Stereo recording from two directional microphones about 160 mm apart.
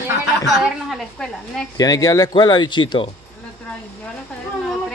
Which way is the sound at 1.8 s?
20° left (ahead or behind).